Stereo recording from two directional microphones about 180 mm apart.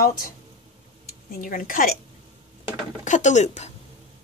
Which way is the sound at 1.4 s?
50° left (ahead or behind).